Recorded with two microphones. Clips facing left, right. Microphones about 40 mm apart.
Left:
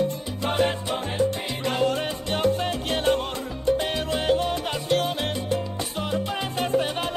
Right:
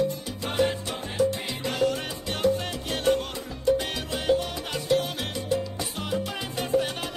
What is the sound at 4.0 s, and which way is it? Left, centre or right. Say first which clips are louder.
Salsa music: left 2 dB; left.